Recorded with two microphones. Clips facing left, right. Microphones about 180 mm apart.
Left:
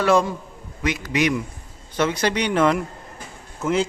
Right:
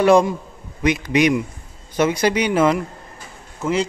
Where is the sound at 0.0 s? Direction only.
15° right (ahead or behind).